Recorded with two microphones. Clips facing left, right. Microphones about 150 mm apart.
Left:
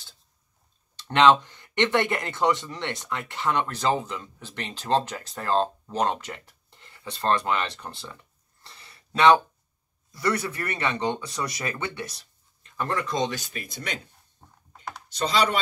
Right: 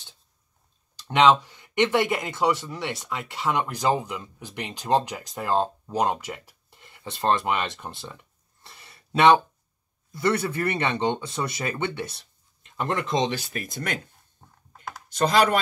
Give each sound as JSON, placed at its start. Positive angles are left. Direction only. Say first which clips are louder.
{"t": 1.0, "sound": "speech", "louder": "even", "side_deg": -5}
{"t": 8.6, "sound": "a sound", "louder": "right 1 dB", "side_deg": -20}
{"t": 10.1, "sound": "speech", "louder": "right 3 dB", "side_deg": -25}
{"t": 15.0, "sound": "speech", "louder": "right 4 dB", "side_deg": -50}